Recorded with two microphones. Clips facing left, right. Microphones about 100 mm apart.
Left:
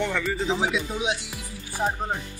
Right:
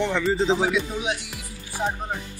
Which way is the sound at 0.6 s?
20° left (ahead or behind).